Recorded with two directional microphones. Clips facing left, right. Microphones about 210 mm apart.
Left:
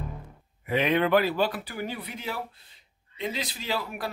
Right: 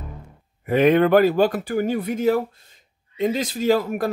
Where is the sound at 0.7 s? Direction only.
45° right (ahead or behind).